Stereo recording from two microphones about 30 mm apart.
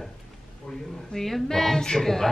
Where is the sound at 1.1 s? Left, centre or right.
Centre.